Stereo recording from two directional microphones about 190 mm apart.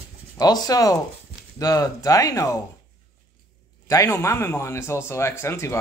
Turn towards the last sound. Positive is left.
turn(degrees=15)  # may be behind; listen again after turning